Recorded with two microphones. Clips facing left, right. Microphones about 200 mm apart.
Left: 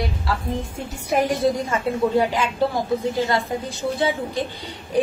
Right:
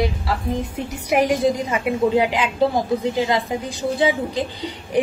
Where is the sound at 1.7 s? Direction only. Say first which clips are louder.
Right 2 dB; 15° right (ahead or behind).